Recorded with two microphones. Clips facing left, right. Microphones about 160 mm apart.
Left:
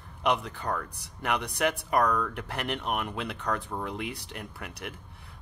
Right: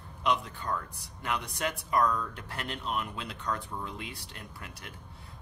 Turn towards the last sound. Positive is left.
turn(degrees=70)  # may be behind; listen again after turning